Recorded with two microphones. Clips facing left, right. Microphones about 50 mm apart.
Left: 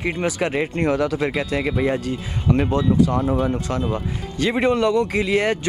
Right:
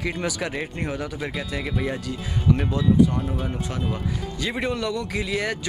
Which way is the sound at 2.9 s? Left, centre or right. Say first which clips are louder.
Left 2 dB; left.